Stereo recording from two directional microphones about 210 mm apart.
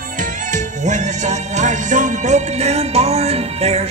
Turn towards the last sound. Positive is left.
turn(degrees=-30)  # may be behind; listen again after turning